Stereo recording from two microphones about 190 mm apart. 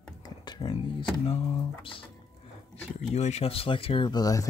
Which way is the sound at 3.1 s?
35° left (ahead or behind).